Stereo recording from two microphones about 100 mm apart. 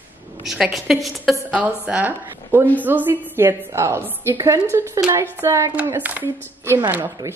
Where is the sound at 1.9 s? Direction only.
15° right (ahead or behind).